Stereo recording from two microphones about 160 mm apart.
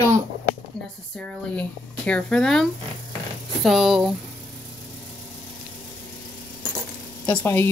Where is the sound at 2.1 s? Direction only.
5° left (ahead or behind).